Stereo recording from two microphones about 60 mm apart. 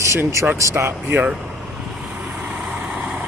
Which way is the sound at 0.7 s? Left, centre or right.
Right.